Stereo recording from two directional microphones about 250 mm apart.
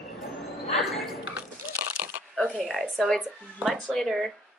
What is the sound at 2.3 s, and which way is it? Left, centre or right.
Speech, centre.